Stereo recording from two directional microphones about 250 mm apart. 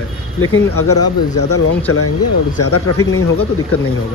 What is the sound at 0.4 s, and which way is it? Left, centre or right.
Speech, left.